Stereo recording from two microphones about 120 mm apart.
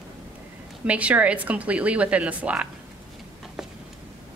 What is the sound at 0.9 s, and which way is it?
A woman's voice, 10° right (ahead or behind).